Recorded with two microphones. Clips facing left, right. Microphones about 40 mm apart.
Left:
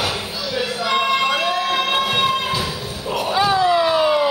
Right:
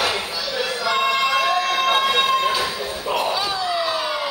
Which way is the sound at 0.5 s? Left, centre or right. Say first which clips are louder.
Left 2 dB; centre.